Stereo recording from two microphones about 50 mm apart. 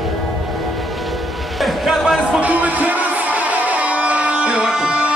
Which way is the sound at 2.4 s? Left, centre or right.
Right.